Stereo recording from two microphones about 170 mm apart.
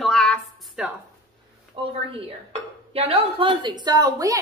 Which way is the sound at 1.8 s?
30° right (ahead or behind).